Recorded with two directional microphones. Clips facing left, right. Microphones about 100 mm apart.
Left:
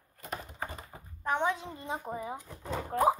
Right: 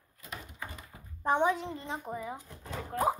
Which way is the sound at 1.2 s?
20° right (ahead or behind).